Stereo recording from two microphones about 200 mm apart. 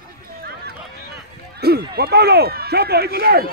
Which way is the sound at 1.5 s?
50° right (ahead or behind).